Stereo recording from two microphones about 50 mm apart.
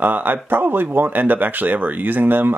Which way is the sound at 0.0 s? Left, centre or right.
Right.